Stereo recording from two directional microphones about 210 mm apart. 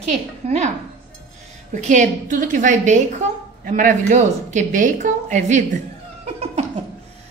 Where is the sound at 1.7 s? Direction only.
35° right (ahead or behind).